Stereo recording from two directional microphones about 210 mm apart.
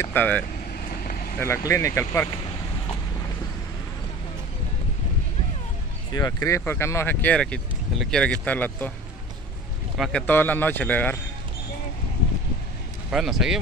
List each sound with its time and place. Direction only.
0.0 s speech: 10° left (ahead or behind)
1.4 s speech: 15° left (ahead or behind)
6.1 s speech: 15° left (ahead or behind)
9.9 s speech: centre (ahead or behind)
13.1 s speech: centre (ahead or behind)